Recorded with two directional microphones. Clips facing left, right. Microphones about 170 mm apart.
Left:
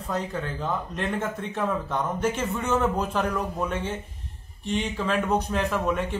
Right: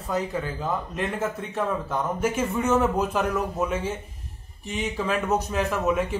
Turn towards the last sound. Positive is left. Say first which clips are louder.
# right 2 dB
turn(degrees=-5)  # may be behind; listen again after turning